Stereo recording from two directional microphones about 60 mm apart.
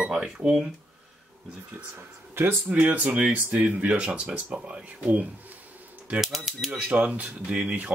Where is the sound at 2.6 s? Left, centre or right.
Right.